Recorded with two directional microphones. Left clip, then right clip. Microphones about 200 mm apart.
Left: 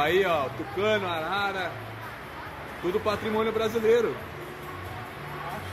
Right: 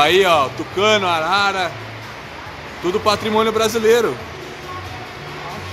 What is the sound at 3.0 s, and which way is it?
A man's voice, 20° right (ahead or behind).